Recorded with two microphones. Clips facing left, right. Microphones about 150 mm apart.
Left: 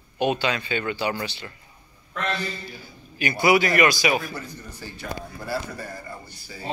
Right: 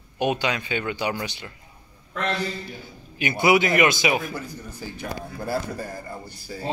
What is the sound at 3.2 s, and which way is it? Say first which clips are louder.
A man's voice: even; 20° right (ahead or behind).